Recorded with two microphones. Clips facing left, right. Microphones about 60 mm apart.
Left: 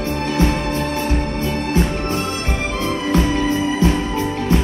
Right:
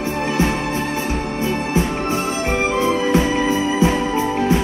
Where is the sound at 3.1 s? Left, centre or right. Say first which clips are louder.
Right 1 dB; centre.